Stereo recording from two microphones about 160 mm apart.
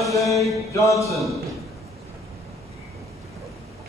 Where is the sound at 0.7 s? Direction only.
20° left (ahead or behind).